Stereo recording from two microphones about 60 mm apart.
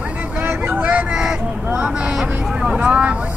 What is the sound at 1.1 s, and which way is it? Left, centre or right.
Vehicle, centre.